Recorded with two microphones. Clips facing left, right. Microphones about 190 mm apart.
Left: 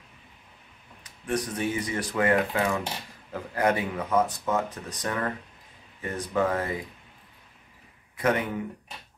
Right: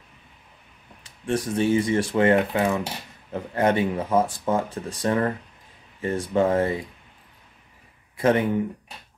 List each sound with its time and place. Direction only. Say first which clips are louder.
1.0 s speech: right 3 dB; 30° right (ahead or behind)
8.2 s speech: right 5 dB; 30° right (ahead or behind)